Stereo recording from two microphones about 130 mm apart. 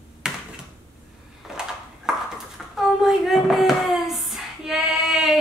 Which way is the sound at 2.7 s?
Centre (ahead or behind).